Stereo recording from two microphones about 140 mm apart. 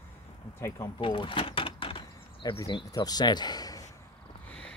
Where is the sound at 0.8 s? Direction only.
35° left (ahead or behind).